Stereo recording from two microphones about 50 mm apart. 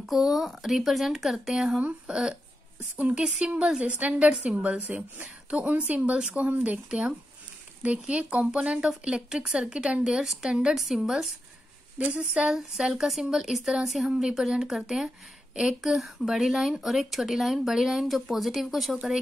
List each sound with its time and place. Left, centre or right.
0.0 s speech: centre
1.8 s speech: right
3.3 s speech: centre
4.5 s speech: centre
5.7 s speech: right
5.9 s speech: centre
6.3 s speech: right
6.9 s speech: centre
12.0 s speech: right
12.4 s speech: centre